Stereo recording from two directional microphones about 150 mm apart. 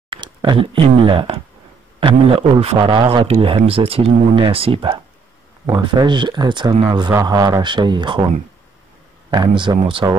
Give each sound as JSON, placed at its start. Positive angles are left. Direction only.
{"t": 0.1, "sound": "a man's voice", "side_deg": -30}
{"t": 9.3, "sound": "a man's voice", "side_deg": -30}